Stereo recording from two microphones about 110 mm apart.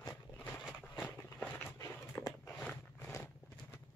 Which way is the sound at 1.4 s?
15° left (ahead or behind).